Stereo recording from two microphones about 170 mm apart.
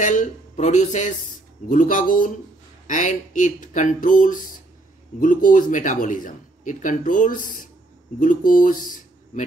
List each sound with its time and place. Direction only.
0.0 s speech: 50° left (ahead or behind)